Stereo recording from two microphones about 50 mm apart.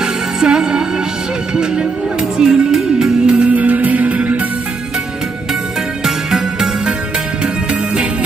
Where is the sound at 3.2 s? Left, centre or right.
Centre.